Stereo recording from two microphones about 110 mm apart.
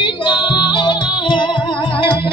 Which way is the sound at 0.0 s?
50° left (ahead or behind).